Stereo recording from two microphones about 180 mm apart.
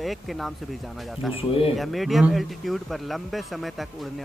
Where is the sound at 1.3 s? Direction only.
30° left (ahead or behind).